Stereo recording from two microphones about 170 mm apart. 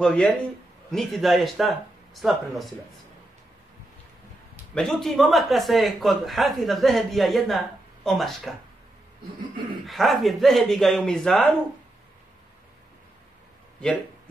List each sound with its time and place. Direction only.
0.0 s a man's voice: 5° left (ahead or behind)
4.7 s a man's voice: centre (ahead or behind)
9.8 s a man's voice: centre (ahead or behind)